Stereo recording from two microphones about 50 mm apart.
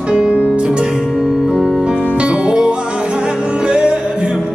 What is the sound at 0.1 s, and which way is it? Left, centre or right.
Music, centre.